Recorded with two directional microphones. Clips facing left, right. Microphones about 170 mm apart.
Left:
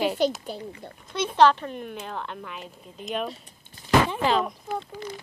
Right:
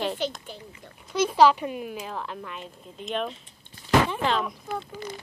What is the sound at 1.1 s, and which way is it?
Speech, 5° right (ahead or behind).